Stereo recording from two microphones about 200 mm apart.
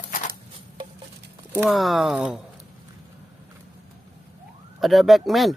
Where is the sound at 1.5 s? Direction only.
5° right (ahead or behind).